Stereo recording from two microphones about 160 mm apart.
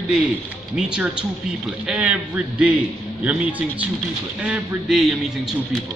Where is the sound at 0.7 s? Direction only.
5° right (ahead or behind).